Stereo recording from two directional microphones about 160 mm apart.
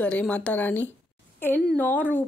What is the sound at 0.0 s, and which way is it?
Speech, 10° left (ahead or behind).